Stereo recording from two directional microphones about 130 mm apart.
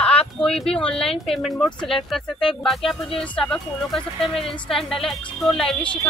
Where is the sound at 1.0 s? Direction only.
45° left (ahead or behind).